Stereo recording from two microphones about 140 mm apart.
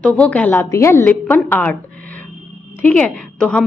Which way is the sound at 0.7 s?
20° left (ahead or behind).